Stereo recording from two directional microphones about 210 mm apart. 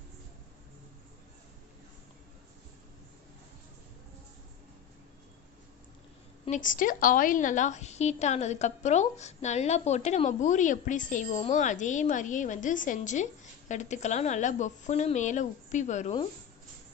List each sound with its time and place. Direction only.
6.4 s a woman's voice: 35° left (ahead or behind)